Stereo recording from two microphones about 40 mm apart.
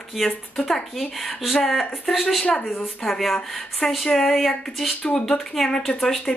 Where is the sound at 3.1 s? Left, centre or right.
Centre.